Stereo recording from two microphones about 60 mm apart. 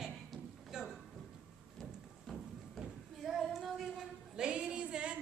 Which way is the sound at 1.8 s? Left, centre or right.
Centre.